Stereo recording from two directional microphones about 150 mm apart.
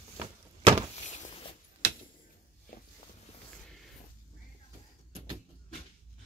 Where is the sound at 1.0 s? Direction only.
55° left (ahead or behind).